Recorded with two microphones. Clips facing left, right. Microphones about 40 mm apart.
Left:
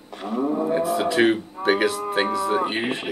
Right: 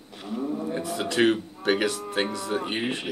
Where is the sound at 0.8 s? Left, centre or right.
Centre.